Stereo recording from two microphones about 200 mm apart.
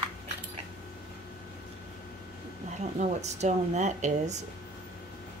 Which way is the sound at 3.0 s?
35° right (ahead or behind).